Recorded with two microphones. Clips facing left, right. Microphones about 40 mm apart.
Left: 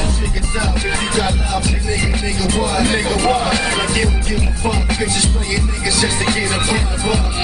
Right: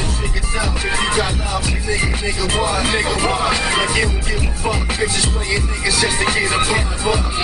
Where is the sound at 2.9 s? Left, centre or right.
Centre.